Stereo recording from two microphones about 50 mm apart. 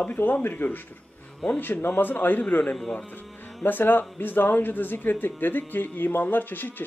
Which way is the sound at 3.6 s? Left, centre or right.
Left.